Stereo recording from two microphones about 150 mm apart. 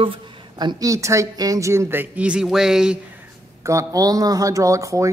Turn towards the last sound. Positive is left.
turn(degrees=-20)  # may be behind; listen again after turning